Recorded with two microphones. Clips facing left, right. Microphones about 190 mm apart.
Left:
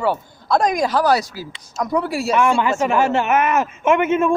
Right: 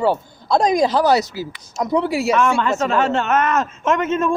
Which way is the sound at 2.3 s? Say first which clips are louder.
Left 2 dB; 10° left (ahead or behind).